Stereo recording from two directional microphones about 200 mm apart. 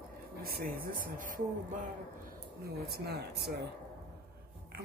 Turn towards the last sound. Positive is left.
turn(degrees=-55)  # may be behind; listen again after turning